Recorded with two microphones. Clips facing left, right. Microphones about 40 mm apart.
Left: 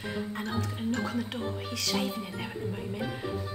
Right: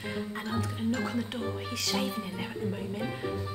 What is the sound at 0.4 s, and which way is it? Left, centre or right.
A woman's voice, centre.